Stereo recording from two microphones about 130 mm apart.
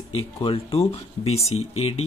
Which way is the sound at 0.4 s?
45° left (ahead or behind).